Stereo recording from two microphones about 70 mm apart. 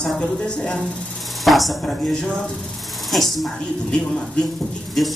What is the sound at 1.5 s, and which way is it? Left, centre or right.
Speech, centre.